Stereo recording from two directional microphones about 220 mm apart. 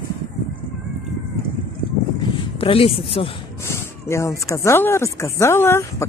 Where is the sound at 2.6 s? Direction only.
25° left (ahead or behind).